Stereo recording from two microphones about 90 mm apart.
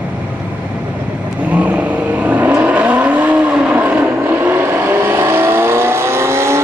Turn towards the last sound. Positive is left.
turn(degrees=-30)  # may be behind; listen again after turning